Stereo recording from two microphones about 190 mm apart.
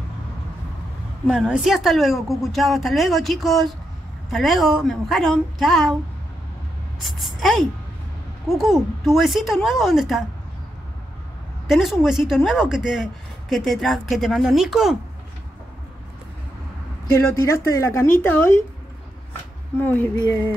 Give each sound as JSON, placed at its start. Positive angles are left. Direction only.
{"t": 1.2, "sound": "speech", "side_deg": -5}
{"t": 7.0, "sound": "speech", "side_deg": 0}
{"t": 11.6, "sound": "speech", "side_deg": 0}
{"t": 17.1, "sound": "speech", "side_deg": 15}
{"t": 19.8, "sound": "speech", "side_deg": 10}